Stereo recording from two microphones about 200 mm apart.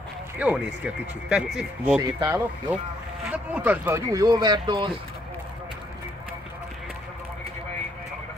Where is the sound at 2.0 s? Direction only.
20° right (ahead or behind).